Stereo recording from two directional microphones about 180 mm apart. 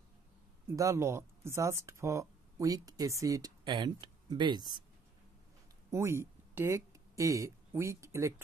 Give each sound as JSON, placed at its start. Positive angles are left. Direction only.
{"t": 0.7, "sound": "speech", "side_deg": -15}
{"t": 5.9, "sound": "speech", "side_deg": -15}